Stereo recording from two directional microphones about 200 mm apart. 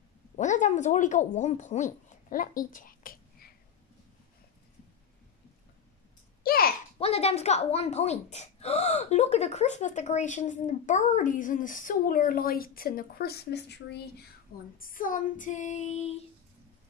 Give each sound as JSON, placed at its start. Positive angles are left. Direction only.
{"t": 0.4, "sound": "speech", "side_deg": 35}
{"t": 6.4, "sound": "a sound", "side_deg": 50}
{"t": 7.0, "sound": "speech", "side_deg": 30}
{"t": 14.8, "sound": "speech", "side_deg": 45}